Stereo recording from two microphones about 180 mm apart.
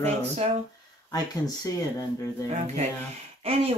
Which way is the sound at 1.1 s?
20° left (ahead or behind).